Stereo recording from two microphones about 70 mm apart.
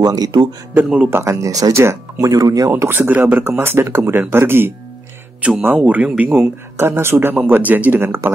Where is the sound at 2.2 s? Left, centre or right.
Right.